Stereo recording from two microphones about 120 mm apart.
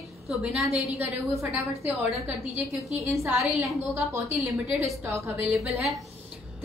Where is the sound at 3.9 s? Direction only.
25° right (ahead or behind).